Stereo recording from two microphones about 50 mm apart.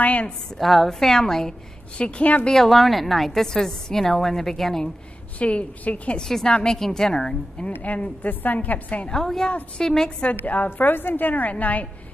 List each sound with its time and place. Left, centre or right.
0.0 s a woman's voice: left
0.6 s a woman's voice: centre
2.0 s a woman's voice: left
2.5 s a woman's voice: centre
5.4 s a woman's voice: left
6.2 s a woman's voice: centre
7.8 s a woman's voice: left
9.1 s a woman's voice: centre
10.2 s a woman's voice: left